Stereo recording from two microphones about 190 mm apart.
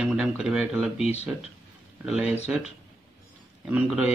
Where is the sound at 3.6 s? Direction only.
5° right (ahead or behind).